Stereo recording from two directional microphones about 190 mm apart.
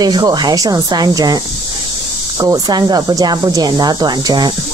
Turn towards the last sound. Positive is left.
turn(degrees=-20)  # may be behind; listen again after turning